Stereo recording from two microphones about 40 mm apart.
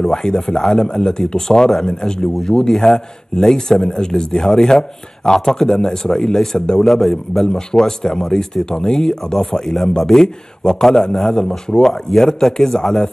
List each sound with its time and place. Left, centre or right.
0.0 s a man's voice: centre
6.8 s a man's voice: centre